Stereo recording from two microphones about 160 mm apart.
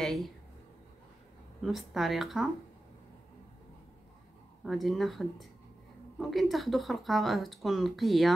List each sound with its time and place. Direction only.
0.0 s a sound: centre (ahead or behind)
1.6 s speech: centre (ahead or behind)
4.6 s speech: centre (ahead or behind)